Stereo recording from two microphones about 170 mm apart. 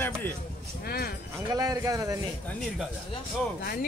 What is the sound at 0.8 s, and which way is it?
Speech, 65° left (ahead or behind).